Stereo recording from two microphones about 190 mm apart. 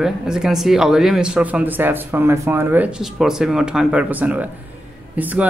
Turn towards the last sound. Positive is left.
turn(degrees=-10)  # may be behind; listen again after turning